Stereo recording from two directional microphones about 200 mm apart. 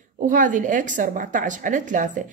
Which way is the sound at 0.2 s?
40° right (ahead or behind).